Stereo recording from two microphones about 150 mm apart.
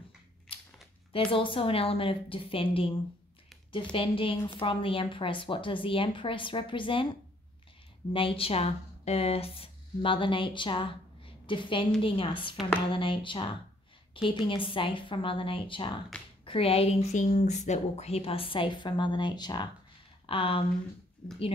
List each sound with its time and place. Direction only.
1.3 s speech: 35° left (ahead or behind)
3.9 s speech: 35° left (ahead or behind)
8.1 s speech: 35° left (ahead or behind)
16.1 s speech: 10° left (ahead or behind)
16.4 s speech: 40° left (ahead or behind)